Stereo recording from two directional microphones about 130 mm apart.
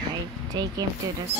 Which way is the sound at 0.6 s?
35° right (ahead or behind).